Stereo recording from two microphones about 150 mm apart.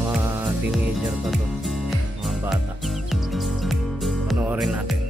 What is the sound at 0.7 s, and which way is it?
Music, 5° right (ahead or behind).